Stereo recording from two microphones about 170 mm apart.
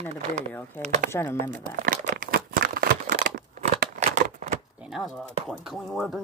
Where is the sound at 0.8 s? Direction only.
45° right (ahead or behind).